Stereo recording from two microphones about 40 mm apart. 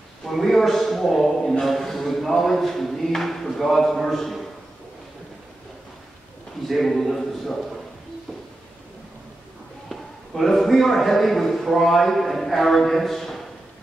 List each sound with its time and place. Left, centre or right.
0.2 s speech: centre
6.7 s speech: centre
9.8 s a man's voice: centre